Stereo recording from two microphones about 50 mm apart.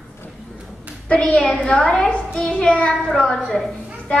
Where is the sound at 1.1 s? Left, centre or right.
Left.